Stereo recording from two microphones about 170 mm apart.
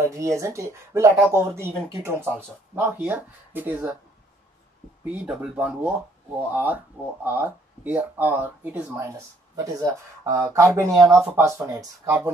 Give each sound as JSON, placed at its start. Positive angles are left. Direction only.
{"t": 0.0, "sound": "speech", "side_deg": -15}
{"t": 5.0, "sound": "speech", "side_deg": -5}